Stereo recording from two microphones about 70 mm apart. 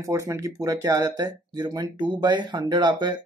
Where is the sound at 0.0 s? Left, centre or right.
Right.